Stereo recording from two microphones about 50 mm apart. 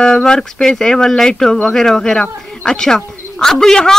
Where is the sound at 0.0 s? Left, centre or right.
Centre.